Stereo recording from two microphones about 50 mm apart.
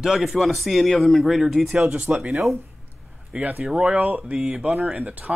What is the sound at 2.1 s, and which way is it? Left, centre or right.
Speech, right.